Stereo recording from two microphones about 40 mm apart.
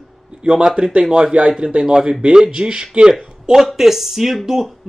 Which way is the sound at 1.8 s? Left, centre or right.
Centre.